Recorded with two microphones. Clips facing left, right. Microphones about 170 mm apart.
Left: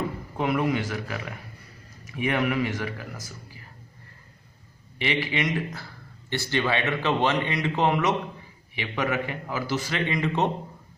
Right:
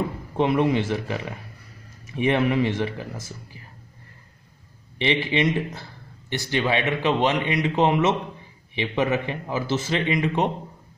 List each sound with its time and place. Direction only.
0.4 s a man's voice: 25° right (ahead or behind)
4.9 s a man's voice: 25° right (ahead or behind)